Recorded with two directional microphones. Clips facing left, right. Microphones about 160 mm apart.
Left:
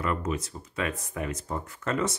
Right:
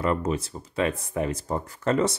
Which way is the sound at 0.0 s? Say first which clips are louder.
Right 4 dB; 30° right (ahead or behind).